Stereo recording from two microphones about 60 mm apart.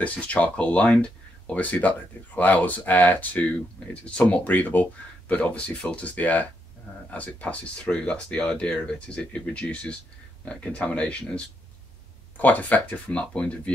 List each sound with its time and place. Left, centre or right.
0.0 s speech: left